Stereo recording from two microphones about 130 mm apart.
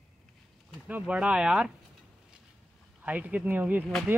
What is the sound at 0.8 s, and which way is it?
Speech, 10° right (ahead or behind).